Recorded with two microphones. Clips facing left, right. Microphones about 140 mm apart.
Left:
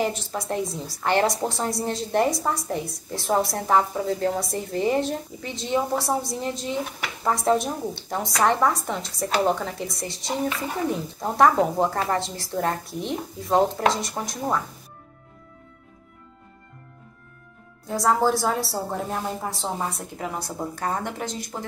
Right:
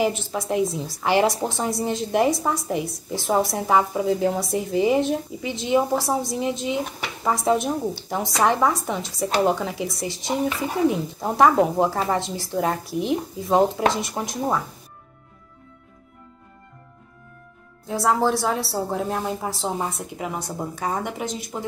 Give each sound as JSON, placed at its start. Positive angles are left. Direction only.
{"t": 0.0, "sound": "a woman's voice", "side_deg": -5}
{"t": 14.2, "sound": "speech", "side_deg": -15}
{"t": 17.8, "sound": "a woman's voice", "side_deg": 0}